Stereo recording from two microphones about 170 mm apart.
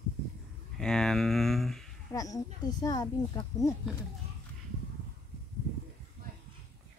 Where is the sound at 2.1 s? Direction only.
20° left (ahead or behind).